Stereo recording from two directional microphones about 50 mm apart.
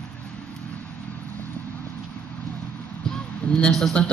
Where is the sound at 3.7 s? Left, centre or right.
Centre.